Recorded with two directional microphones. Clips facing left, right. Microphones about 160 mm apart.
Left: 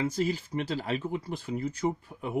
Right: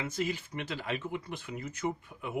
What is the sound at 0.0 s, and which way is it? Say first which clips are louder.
Speech: left 5 dB; 35° left (ahead or behind).